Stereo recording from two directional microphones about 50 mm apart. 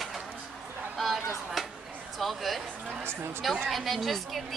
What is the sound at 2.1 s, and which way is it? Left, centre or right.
Speech, centre.